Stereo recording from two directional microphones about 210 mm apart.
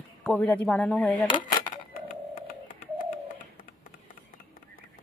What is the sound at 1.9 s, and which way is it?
Bird, 40° left (ahead or behind).